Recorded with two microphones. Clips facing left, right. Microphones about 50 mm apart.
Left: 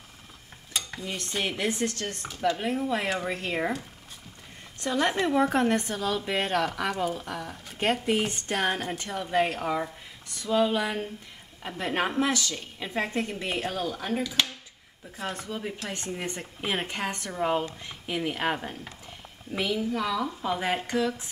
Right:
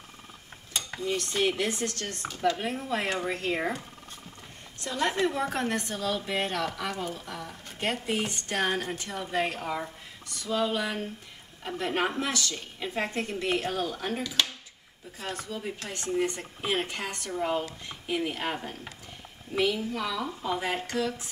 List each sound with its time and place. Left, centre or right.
1.0 s speech: centre
4.8 s speech: centre
13.7 s speech: centre
20.5 s speech: centre